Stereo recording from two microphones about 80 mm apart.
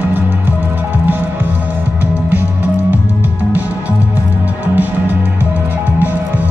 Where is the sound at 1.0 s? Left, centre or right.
Right.